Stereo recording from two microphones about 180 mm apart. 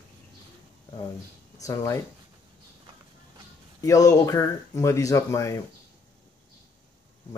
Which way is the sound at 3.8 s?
20° left (ahead or behind).